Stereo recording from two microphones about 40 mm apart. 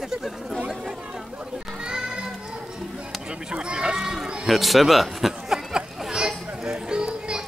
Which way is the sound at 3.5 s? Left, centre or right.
Right.